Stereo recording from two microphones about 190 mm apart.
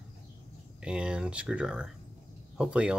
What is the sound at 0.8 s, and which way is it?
Speech, 5° right (ahead or behind).